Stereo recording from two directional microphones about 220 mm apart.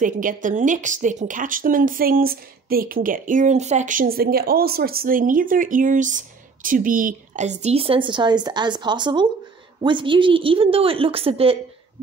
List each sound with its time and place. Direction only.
0.0 s a woman's voice: 35° right (ahead or behind)